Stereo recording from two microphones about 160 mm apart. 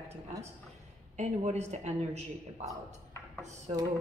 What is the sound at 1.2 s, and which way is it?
A man's voice, 45° right (ahead or behind).